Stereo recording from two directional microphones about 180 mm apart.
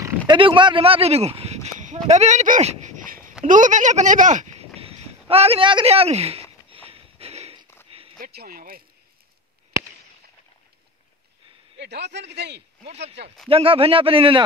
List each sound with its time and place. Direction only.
0.3 s speech: 30° right (ahead or behind)
2.0 s a sound: 40° right (ahead or behind)
3.4 s speech: 45° right (ahead or behind)
6.7 s a sound: 30° right (ahead or behind)
8.2 s speech: 60° right (ahead or behind)
11.8 s a man's voice: 70° right (ahead or behind)
13.5 s a man's voice: 30° right (ahead or behind)